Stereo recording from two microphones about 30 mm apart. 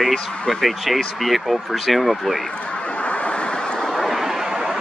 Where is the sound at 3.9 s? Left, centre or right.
Centre.